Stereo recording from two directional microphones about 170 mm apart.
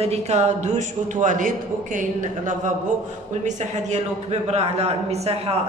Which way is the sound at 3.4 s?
40° right (ahead or behind).